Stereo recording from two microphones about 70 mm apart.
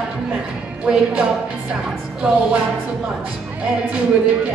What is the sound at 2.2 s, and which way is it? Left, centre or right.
Music, centre.